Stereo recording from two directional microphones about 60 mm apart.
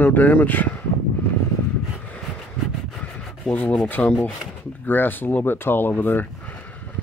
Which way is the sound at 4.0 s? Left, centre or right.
Left.